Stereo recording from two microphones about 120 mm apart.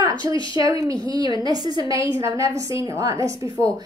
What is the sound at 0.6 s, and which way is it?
A woman's voice, 30° right (ahead or behind).